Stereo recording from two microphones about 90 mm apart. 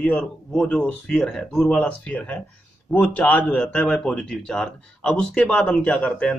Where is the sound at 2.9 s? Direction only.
25° left (ahead or behind).